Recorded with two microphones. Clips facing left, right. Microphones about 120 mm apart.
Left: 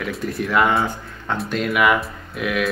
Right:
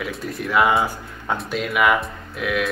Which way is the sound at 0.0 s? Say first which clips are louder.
Left 3 dB; centre (ahead or behind).